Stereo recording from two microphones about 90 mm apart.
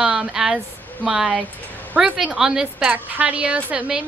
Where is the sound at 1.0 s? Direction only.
5° right (ahead or behind).